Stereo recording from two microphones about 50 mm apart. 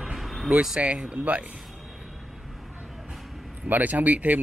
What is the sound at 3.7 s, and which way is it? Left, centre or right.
Speech, right.